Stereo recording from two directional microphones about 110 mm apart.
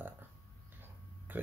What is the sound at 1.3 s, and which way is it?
Speech, 15° right (ahead or behind).